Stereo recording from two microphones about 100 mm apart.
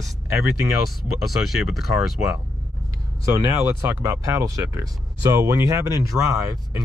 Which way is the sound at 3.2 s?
35° right (ahead or behind).